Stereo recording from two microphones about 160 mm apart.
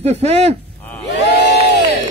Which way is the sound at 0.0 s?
40° right (ahead or behind).